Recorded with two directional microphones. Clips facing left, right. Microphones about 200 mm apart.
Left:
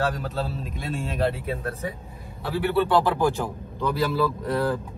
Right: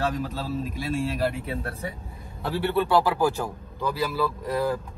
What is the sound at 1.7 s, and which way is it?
Speech, 30° right (ahead or behind).